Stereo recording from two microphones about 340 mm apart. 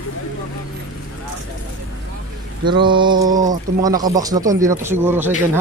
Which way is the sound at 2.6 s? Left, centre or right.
Centre.